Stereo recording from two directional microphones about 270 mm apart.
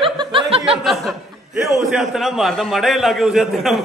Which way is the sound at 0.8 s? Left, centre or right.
Centre.